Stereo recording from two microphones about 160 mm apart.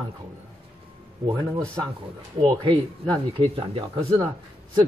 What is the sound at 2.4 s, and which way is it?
Speech, 25° right (ahead or behind).